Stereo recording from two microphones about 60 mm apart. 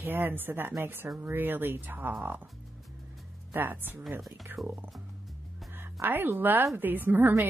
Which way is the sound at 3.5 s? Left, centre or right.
Right.